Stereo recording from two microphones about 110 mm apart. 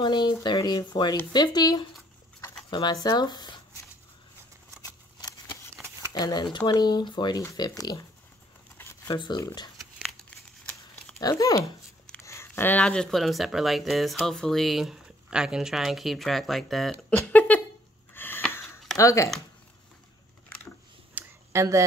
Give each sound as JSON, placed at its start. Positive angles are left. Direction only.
{"t": 0.0, "sound": "speech", "side_deg": 40}
{"t": 6.1, "sound": "speech", "side_deg": 40}
{"t": 9.0, "sound": "speech", "side_deg": 45}
{"t": 10.6, "sound": "crumpling", "side_deg": 10}
{"t": 11.1, "sound": "speech", "side_deg": 35}
{"t": 17.3, "sound": "a sound", "side_deg": 15}
{"t": 18.9, "sound": "speech", "side_deg": 30}
{"t": 21.1, "sound": "a sound", "side_deg": -15}
{"t": 21.5, "sound": "speech", "side_deg": -30}